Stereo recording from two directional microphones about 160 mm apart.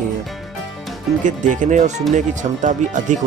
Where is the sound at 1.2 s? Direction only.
50° right (ahead or behind).